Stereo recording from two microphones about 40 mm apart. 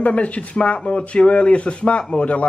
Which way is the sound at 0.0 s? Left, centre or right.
Left.